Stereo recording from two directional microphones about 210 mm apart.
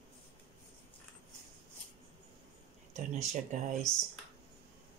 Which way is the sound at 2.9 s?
35° right (ahead or behind).